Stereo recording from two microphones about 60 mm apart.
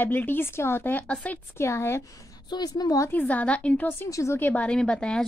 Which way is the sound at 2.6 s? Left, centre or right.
Left.